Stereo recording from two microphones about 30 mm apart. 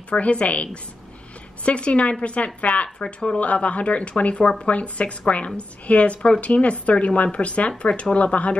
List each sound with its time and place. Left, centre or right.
0.2 s speech: left
3.0 s speech: left
3.3 s speech: left
4.6 s speech: left